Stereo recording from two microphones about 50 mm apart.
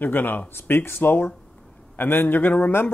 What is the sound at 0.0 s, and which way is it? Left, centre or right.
Speech, left.